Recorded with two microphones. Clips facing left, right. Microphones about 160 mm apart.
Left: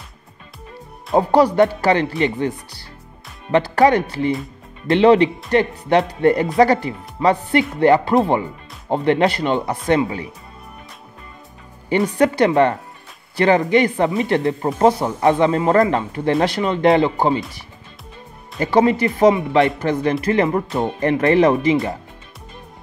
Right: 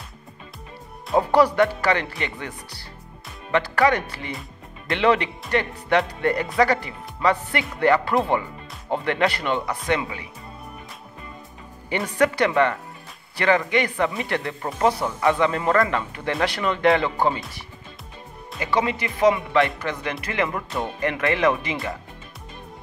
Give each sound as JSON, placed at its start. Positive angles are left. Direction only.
{"t": 1.3, "sound": "speech", "side_deg": 35}
{"t": 3.5, "sound": "speech", "side_deg": 30}
{"t": 12.0, "sound": "speech", "side_deg": 30}
{"t": 18.6, "sound": "speech", "side_deg": 40}